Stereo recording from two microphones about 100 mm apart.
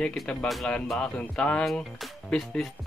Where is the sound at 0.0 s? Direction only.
5° left (ahead or behind).